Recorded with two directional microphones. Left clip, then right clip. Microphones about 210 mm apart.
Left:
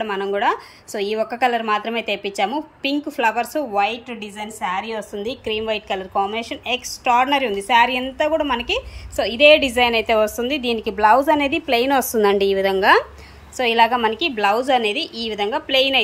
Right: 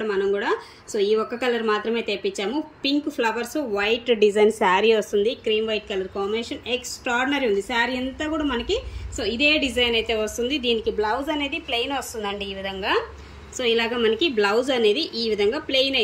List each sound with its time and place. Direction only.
0.0 s a woman's voice: 10° left (ahead or behind)
4.1 s a woman's voice: 15° right (ahead or behind); by 10.9 s 15° left (ahead or behind)
10.9 s a woman's voice: 45° left (ahead or behind)
11.3 s a woman's voice: 20° left (ahead or behind)
13.6 s a woman's voice: 10° left (ahead or behind)